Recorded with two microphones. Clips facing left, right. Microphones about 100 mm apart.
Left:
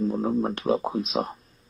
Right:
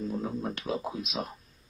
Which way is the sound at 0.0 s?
45° left (ahead or behind).